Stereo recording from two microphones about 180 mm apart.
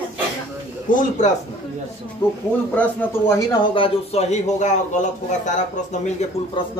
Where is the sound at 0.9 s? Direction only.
45° left (ahead or behind).